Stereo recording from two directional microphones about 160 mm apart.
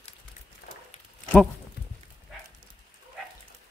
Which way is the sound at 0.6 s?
60° left (ahead or behind).